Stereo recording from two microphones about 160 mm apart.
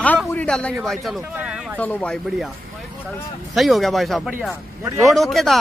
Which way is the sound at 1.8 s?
10° left (ahead or behind).